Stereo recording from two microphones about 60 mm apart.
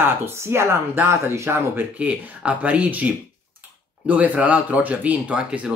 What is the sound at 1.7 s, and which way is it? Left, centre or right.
Speech, right.